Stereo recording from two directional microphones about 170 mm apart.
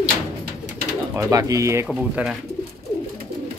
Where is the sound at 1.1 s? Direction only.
20° right (ahead or behind).